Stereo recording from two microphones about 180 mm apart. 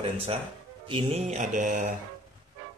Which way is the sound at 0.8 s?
30° right (ahead or behind).